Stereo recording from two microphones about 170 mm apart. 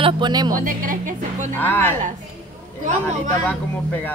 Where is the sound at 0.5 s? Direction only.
55° right (ahead or behind).